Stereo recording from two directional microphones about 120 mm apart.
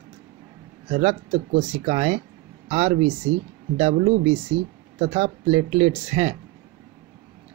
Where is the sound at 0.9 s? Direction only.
60° right (ahead or behind).